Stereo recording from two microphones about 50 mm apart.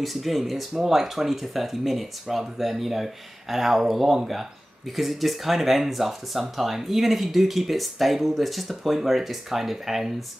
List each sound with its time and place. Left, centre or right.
0.0 s speech: centre